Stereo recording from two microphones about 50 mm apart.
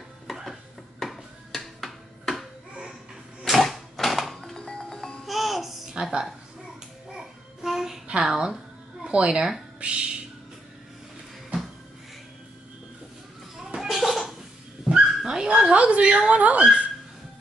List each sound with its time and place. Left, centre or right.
0.3 s music: centre
3.4 s music: centre
5.2 s music: centre
7.1 s child singing: centre
8.2 s speech: centre
9.0 s speech: right
13.7 s cough: centre
14.9 s dog: centre